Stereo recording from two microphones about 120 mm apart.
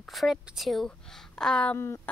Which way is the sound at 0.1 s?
Centre (ahead or behind).